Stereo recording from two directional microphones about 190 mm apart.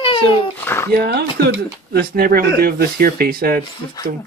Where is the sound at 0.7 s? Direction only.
10° left (ahead or behind).